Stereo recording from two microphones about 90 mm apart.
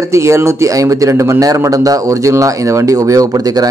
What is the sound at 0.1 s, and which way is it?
Speech, 35° right (ahead or behind).